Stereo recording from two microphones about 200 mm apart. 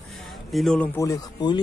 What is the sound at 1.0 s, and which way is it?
Speech, 15° left (ahead or behind).